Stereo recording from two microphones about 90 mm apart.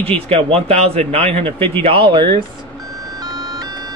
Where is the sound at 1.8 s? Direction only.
80° right; by 2.4 s 60° right (ahead or behind).